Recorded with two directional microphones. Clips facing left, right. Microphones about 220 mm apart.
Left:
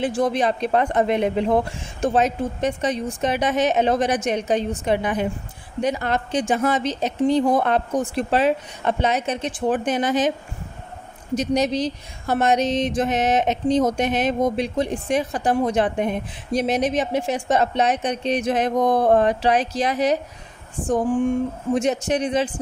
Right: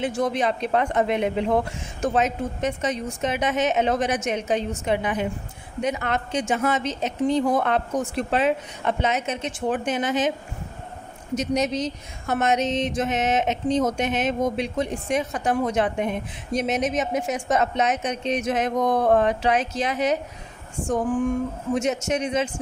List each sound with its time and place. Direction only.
0.0 s speech: 35° left (ahead or behind)
11.3 s speech: 35° left (ahead or behind)
21.7 s speech: 35° left (ahead or behind)